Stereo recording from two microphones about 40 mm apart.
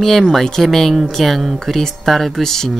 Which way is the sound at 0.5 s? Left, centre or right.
Centre.